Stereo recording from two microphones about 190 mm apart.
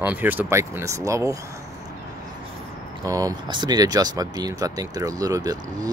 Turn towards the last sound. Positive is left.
turn(degrees=-20)  # may be behind; listen again after turning